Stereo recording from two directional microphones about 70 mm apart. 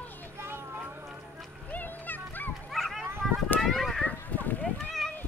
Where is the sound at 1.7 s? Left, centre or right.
Left.